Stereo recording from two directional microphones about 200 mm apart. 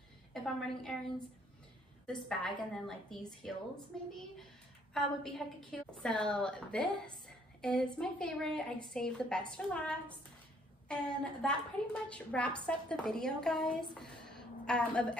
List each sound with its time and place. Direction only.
0.3 s a woman's voice: 5° left (ahead or behind)
2.0 s a woman's voice: centre (ahead or behind)
4.9 s a woman's voice: centre (ahead or behind)